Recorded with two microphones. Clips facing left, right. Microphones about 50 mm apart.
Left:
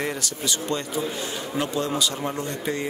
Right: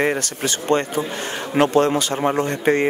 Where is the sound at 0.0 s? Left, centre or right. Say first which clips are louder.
Right 7 dB; right.